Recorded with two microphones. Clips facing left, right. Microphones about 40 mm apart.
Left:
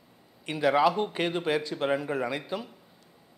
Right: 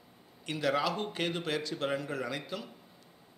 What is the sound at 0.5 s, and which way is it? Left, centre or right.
A man's voice, centre.